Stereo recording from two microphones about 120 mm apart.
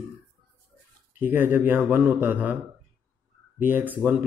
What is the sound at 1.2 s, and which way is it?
Speech, 15° right (ahead or behind).